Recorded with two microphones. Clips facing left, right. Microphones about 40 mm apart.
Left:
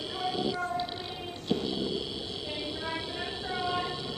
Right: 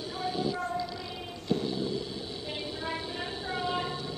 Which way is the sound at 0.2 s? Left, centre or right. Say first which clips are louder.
Even; left.